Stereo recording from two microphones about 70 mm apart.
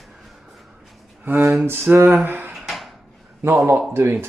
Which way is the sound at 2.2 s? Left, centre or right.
Right.